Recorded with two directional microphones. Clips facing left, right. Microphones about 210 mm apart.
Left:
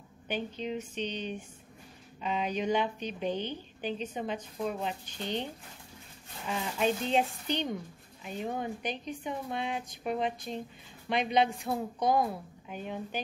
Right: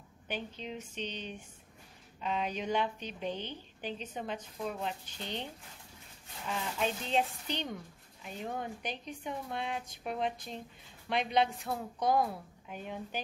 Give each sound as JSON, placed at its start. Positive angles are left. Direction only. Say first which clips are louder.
{"t": 0.3, "sound": "a woman's voice", "louder": "left 6 dB", "side_deg": 0}
{"t": 11.7, "sound": "a woman's voice", "louder": "left 4 dB", "side_deg": 20}
{"t": 12.1, "sound": "a woman's voice", "louder": "left 1 dB", "side_deg": 0}